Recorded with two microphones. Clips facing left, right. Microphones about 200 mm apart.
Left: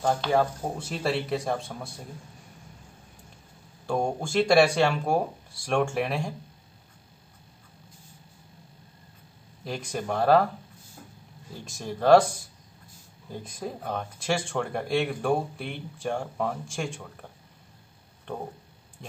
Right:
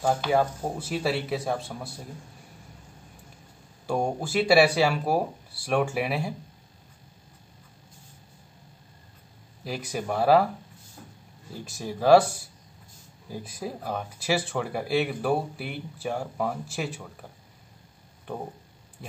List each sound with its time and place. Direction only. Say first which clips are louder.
0.0 s speech: even; 5° right (ahead or behind)
3.8 s speech: even; 5° right (ahead or behind)
9.7 s speech: even; 5° right (ahead or behind)
11.5 s speech: right 1 dB; 5° right (ahead or behind)
19.0 s speech: right 1 dB; 5° right (ahead or behind)